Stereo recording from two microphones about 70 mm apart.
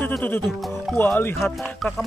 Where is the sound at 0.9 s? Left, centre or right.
Left.